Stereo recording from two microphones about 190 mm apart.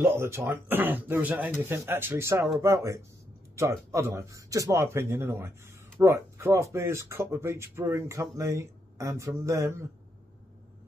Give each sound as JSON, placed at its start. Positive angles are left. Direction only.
{"t": 0.0, "sound": "speech", "side_deg": -15}